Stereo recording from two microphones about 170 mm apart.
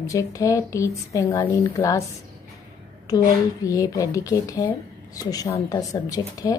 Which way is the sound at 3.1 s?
20° left (ahead or behind).